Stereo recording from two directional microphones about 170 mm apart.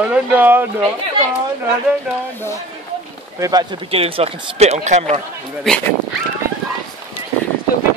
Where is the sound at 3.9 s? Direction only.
35° right (ahead or behind).